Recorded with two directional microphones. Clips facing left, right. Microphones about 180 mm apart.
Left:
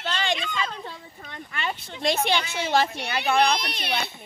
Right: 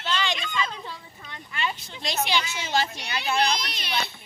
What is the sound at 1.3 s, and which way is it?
A woman's voice, 50° left (ahead or behind).